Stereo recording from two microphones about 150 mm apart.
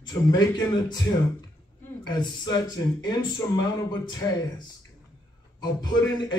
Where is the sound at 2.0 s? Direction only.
30° left (ahead or behind).